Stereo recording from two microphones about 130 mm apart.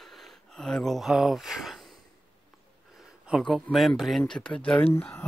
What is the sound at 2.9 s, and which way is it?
Speech, 5° right (ahead or behind).